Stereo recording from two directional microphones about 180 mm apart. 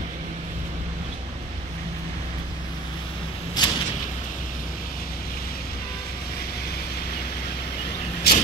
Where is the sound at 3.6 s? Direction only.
25° left (ahead or behind).